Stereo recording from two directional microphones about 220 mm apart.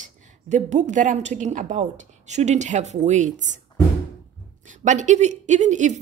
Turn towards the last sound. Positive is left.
turn(degrees=-35)  # may be behind; listen again after turning